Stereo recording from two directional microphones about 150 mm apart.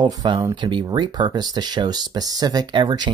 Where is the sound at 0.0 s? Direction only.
30° right (ahead or behind).